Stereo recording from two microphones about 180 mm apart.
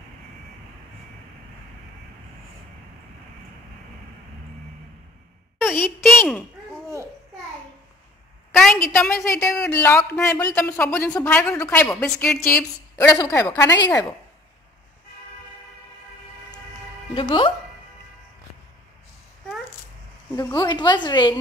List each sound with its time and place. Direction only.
5.6 s a sound: 10° left (ahead or behind)
6.0 s speech: centre (ahead or behind)
8.5 s a woman's voice: 5° left (ahead or behind)
9.8 s speech: 15° left (ahead or behind)
12.9 s speech: 20° left (ahead or behind)
17.1 s a woman's voice: 30° left (ahead or behind)
20.3 s a woman's voice: 20° left (ahead or behind)